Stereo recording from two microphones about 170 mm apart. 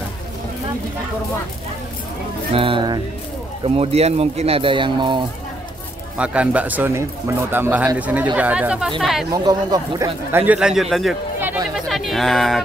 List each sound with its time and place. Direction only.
2.5 s speech: 30° right (ahead or behind)
6.1 s a man's voice: 5° right (ahead or behind)
9.3 s a man's voice: 25° right (ahead or behind); by 11.1 s centre (ahead or behind)
11.3 s chatter: 15° right (ahead or behind)
11.7 s speech: centre (ahead or behind)